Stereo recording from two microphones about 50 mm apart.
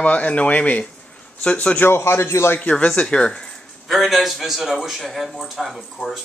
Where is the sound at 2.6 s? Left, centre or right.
Left.